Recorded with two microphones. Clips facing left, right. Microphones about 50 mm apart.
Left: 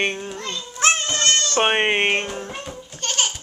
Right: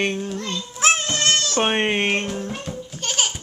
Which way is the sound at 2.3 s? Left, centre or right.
Centre.